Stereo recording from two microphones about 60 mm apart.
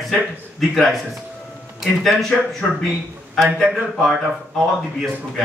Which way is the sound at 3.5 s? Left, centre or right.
Centre.